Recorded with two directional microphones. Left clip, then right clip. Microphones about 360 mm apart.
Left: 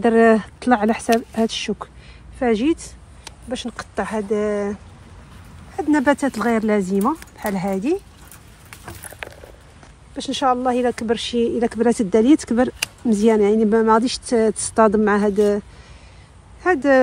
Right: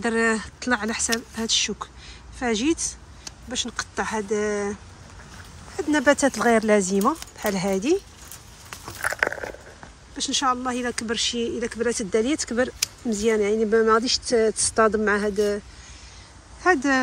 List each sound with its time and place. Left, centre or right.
0.0 s speech: centre
5.8 s speech: centre
10.1 s speech: centre
13.6 s speech: left
14.0 s speech: centre
16.6 s speech: centre